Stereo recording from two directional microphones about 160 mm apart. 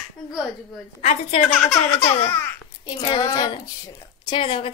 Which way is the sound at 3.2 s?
25° left (ahead or behind).